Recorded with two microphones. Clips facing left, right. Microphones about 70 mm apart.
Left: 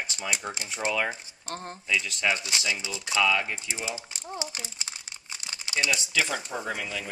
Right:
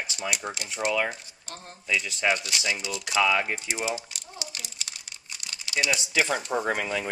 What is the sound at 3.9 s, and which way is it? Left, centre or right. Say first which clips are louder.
Crumpling: right 2 dB; left.